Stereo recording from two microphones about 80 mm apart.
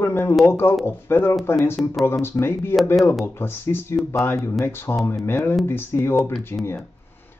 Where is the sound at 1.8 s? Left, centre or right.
Left.